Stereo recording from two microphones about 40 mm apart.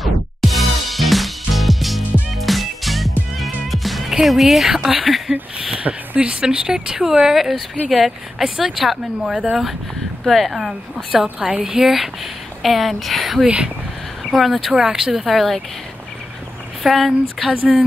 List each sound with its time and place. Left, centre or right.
0.0 s music: centre
4.3 s speech: centre
5.8 s speech: right
6.4 s speech: centre
9.3 s speech: right
10.2 s speech: centre
14.7 s speech: centre
15.2 s speech: centre
16.8 s speech: centre
17.5 s speech: right